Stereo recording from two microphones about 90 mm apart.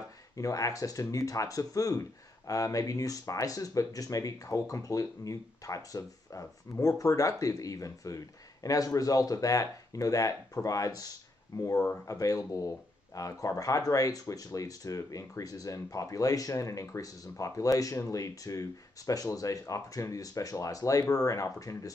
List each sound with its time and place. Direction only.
0.4 s speech: 40° left (ahead or behind)
12.1 s speech: 40° left (ahead or behind)